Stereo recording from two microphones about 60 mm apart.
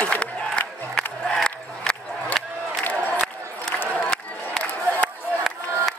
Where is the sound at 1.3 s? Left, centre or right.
Centre.